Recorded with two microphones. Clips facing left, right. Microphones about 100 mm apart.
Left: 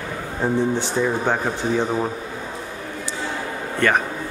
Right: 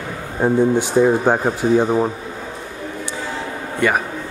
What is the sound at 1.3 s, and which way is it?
Speech, 15° right (ahead or behind).